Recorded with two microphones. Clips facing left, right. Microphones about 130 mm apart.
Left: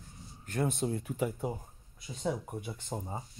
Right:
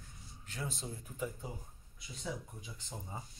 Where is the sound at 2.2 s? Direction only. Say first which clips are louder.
Left 9 dB; 65° left (ahead or behind).